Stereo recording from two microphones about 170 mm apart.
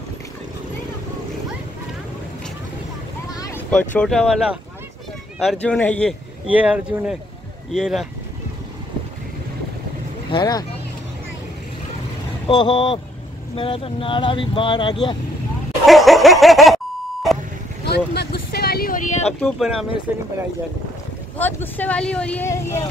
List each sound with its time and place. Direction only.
3.3 s boat: 20° left (ahead or behind)
3.9 s speech: 5° left (ahead or behind)
6.4 s speech: 10° right (ahead or behind)
10.3 s speech: 25° left (ahead or behind)
12.4 s speech: 30° left (ahead or behind)
15.9 s beep: centre (ahead or behind)
17.8 s vehicle: 75° left (ahead or behind); by 19.3 s 45° left (ahead or behind)
19.4 s speech: centre (ahead or behind)
21.4 s speech: 10° left (ahead or behind)